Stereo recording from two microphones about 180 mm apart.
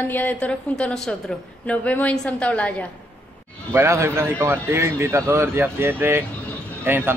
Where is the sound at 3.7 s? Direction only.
15° right (ahead or behind).